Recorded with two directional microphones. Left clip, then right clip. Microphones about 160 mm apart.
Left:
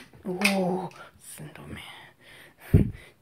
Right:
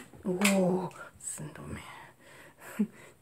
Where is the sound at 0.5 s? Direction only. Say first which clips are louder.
Left 2 dB; 10° right (ahead or behind).